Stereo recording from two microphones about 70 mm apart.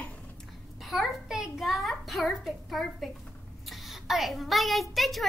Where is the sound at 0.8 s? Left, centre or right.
Centre.